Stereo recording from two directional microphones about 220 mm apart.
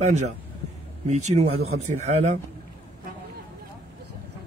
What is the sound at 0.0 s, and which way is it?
Speech, 30° right (ahead or behind).